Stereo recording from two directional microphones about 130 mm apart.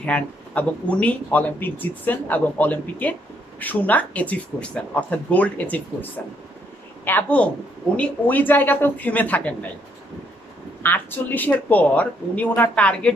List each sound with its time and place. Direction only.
0.0 s speech: 10° left (ahead or behind)
7.1 s speech: 10° left (ahead or behind)
10.8 s speech: 15° left (ahead or behind)